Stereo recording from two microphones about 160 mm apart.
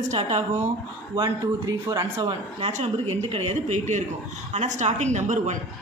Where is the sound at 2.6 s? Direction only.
40° right (ahead or behind).